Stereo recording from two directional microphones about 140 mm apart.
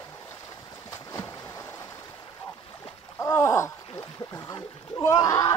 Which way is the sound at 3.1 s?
20° left (ahead or behind).